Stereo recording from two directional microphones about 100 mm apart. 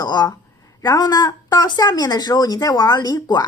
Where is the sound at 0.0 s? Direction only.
40° left (ahead or behind).